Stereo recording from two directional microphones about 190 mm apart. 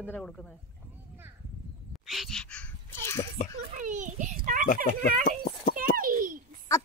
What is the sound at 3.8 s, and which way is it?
Children playing, 40° right (ahead or behind).